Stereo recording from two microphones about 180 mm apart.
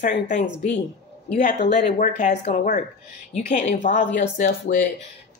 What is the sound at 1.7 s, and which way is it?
Speech, 45° left (ahead or behind).